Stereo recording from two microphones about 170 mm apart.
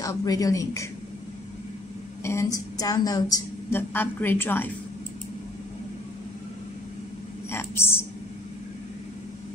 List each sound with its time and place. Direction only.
0.0 s a woman's voice: 20° left (ahead or behind)
2.2 s a woman's voice: 15° left (ahead or behind)
7.5 s whispering: 15° left (ahead or behind)